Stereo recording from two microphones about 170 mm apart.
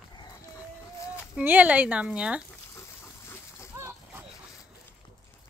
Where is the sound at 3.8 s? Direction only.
15° right (ahead or behind).